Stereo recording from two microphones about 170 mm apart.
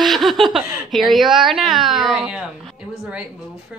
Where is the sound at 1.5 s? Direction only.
Centre (ahead or behind).